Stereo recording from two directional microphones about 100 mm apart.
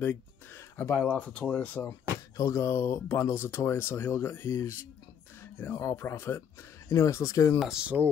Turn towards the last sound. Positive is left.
turn(degrees=-10)  # may be behind; listen again after turning